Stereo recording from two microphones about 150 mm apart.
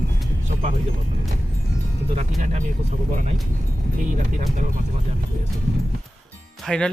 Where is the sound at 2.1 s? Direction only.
50° right (ahead or behind).